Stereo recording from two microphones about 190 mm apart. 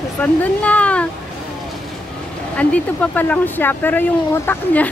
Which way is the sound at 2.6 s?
5° left (ahead or behind).